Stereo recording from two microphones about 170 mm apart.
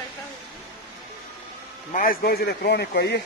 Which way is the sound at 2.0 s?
60° left (ahead or behind).